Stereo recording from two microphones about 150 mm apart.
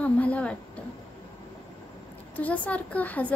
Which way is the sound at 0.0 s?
10° left (ahead or behind).